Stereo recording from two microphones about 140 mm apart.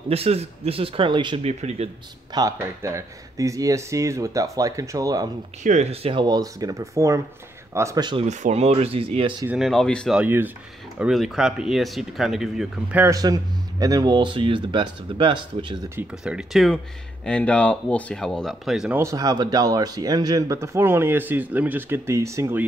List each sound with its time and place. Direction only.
0.1 s speech: 45° right (ahead or behind)
1.4 s speech: 50° right (ahead or behind)
2.3 s speech: 20° right (ahead or behind)
5.6 s speech: 55° right (ahead or behind)
6.2 s speech: 30° right (ahead or behind)
8.3 s speech: 55° right (ahead or behind)
9.5 s speech: centre (ahead or behind)
10.1 s speech: 15° right (ahead or behind)
13.0 s speech: 25° right (ahead or behind)
16.0 s speech: 5° right (ahead or behind)
16.7 s speech: 10° left (ahead or behind)
18.9 s speech: 25° right (ahead or behind)